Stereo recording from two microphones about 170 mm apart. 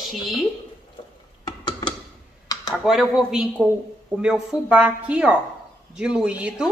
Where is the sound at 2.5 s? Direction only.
20° left (ahead or behind).